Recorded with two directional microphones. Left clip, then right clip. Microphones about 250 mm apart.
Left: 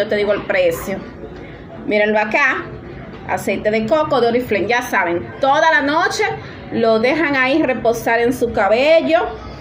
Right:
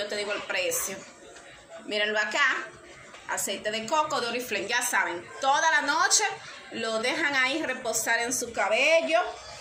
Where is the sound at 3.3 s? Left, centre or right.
Right.